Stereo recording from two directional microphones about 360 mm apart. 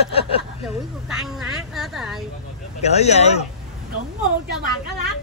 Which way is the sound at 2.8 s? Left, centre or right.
Centre.